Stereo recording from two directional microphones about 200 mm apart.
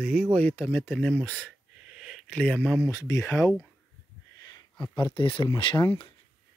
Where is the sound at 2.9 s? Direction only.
15° left (ahead or behind).